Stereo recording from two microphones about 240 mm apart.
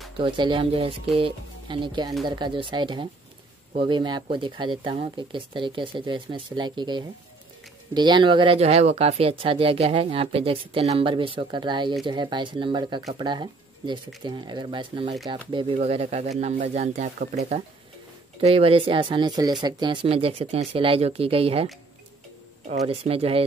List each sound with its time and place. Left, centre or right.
0.2 s speech: centre
22.7 s speech: right